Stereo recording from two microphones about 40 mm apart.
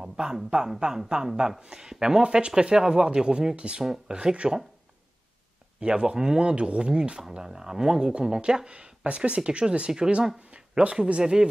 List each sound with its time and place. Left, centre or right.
0.0 s a woman's voice: centre
5.8 s a woman's voice: right